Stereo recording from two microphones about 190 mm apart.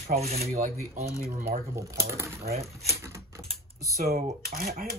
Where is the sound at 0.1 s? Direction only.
35° right (ahead or behind).